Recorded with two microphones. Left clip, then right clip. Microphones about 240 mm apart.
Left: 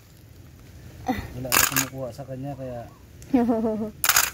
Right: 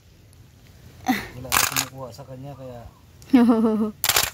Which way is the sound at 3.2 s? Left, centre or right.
Right.